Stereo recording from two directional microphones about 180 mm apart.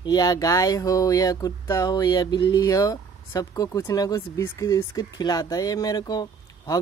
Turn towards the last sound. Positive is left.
turn(degrees=20)  # may be behind; listen again after turning